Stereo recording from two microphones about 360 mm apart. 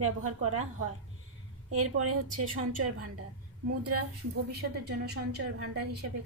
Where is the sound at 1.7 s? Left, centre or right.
Right.